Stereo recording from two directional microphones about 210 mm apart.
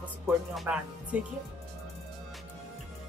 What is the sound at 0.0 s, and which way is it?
Speech, 5° right (ahead or behind).